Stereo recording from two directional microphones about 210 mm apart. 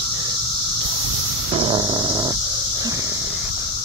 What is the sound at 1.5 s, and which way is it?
Dog, 25° right (ahead or behind).